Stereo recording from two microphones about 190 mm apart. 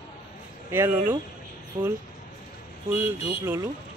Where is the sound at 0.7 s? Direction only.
10° right (ahead or behind).